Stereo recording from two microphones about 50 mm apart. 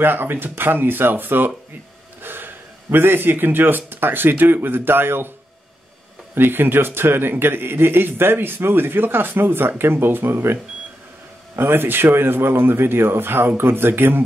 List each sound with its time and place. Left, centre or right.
0.0 s speech: right
6.3 s speech: right